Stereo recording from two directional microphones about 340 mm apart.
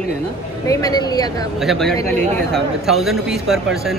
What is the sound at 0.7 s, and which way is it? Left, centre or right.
Speech, centre.